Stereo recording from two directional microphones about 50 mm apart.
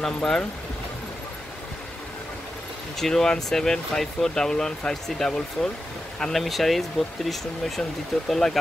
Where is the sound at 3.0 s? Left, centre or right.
Centre.